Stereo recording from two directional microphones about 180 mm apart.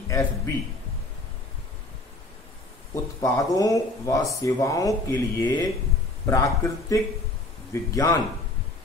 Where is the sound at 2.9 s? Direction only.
15° left (ahead or behind).